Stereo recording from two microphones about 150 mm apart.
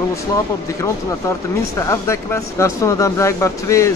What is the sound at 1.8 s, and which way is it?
Speech, 20° left (ahead or behind).